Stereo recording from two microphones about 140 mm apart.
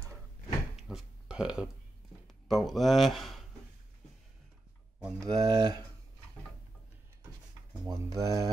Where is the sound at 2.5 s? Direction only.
Centre (ahead or behind).